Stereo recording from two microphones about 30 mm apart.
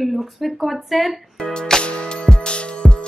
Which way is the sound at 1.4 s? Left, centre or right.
Left.